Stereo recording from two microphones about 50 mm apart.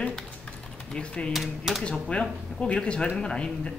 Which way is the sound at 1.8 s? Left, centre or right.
Centre.